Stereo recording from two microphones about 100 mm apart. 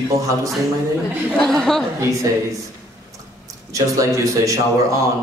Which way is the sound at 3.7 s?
35° right (ahead or behind).